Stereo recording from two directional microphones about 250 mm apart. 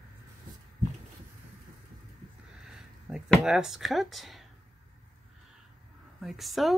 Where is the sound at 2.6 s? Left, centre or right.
Centre.